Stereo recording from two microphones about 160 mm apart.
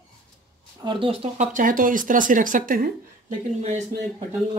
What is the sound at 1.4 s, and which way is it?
Speech, 55° right (ahead or behind).